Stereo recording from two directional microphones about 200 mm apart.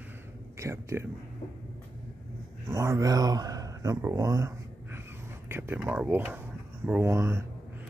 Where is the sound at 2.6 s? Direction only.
15° right (ahead or behind).